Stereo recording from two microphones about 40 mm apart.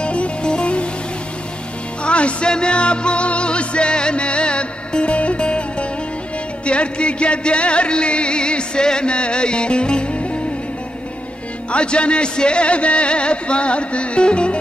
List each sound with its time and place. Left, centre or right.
0.0 s music: left
2.0 s music: left
11.7 s music: left